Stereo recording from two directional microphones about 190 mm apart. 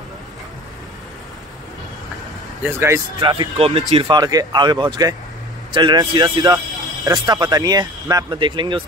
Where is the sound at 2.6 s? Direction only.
15° right (ahead or behind).